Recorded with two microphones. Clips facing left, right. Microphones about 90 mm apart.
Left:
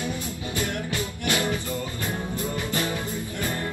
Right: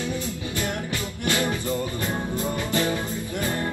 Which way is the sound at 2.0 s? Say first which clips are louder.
Right 2 dB; 20° right (ahead or behind).